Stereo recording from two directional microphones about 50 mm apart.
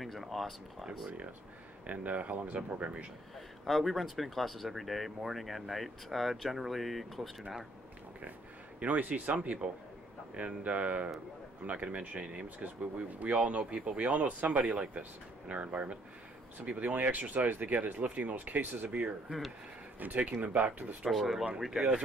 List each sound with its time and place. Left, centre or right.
0.0 s speech: centre
1.9 s speech: right
3.6 s speech: centre
8.7 s speech: right
21.1 s speech: centre